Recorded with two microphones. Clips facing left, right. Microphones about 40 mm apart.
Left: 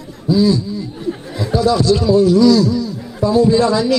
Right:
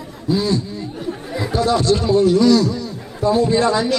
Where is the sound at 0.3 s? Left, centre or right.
Right.